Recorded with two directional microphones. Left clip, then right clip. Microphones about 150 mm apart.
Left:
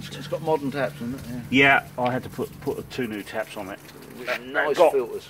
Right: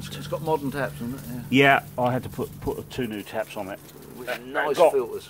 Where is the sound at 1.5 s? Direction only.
55° right (ahead or behind).